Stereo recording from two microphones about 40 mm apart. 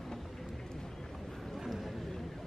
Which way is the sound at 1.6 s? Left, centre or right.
Centre.